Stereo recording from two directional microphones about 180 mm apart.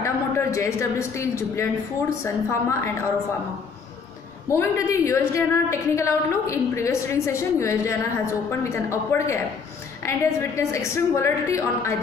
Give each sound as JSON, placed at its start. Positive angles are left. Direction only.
{"t": 0.0, "sound": "a woman's voice", "side_deg": 15}
{"t": 4.5, "sound": "a woman's voice", "side_deg": 15}